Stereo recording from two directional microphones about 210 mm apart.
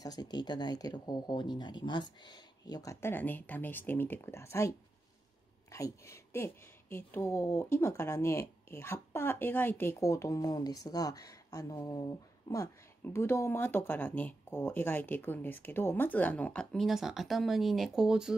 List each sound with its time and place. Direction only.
0.0 s a woman's voice: 20° left (ahead or behind); by 18.3 s 5° right (ahead or behind)